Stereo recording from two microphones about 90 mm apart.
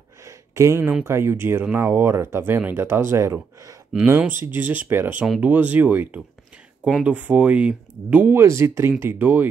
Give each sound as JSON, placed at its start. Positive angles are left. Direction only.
{"t": 0.2, "sound": "a sound", "side_deg": -35}
{"t": 1.0, "sound": "speech", "side_deg": -30}
{"t": 8.4, "sound": "speech", "side_deg": -30}